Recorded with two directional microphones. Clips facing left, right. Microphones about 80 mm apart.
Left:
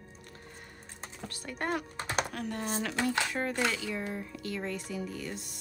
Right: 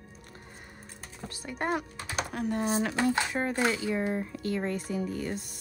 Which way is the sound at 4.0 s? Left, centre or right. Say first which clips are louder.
Right 6 dB; right.